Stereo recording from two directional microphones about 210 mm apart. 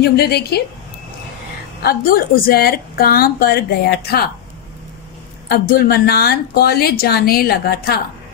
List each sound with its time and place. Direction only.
0.1 s speech: 50° left (ahead or behind)
1.8 s speech: 45° left (ahead or behind)
5.5 s speech: 45° left (ahead or behind)